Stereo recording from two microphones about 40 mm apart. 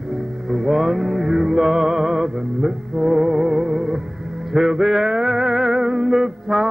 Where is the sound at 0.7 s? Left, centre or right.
Centre.